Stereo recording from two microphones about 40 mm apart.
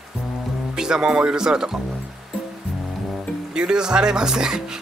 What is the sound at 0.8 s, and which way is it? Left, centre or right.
Speech, centre.